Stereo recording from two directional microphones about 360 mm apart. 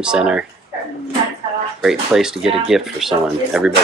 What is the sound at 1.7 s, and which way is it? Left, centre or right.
Speech, centre.